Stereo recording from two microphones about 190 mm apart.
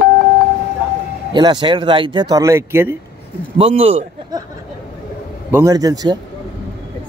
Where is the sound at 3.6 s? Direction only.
30° right (ahead or behind).